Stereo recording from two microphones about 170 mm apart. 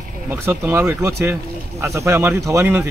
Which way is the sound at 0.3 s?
10° right (ahead or behind).